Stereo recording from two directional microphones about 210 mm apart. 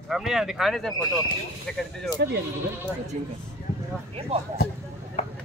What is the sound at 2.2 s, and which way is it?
Speech, 50° right (ahead or behind).